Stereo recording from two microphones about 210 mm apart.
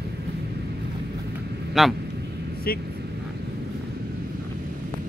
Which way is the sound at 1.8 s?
Centre (ahead or behind).